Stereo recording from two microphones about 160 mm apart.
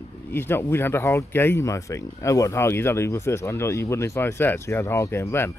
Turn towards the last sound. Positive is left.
turn(degrees=15)  # may be behind; listen again after turning